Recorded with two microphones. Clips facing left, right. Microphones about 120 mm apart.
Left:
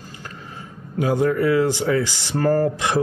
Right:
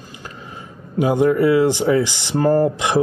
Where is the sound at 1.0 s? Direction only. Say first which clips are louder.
Right 4 dB; 20° right (ahead or behind).